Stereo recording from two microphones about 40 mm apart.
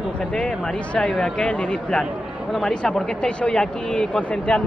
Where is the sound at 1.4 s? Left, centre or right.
Left.